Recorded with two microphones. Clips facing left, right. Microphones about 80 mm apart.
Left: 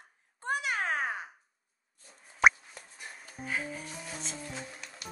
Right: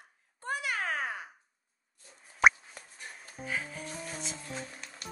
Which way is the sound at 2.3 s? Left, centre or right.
Centre.